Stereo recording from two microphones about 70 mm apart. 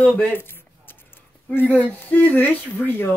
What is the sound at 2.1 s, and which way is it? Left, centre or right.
Speech, left.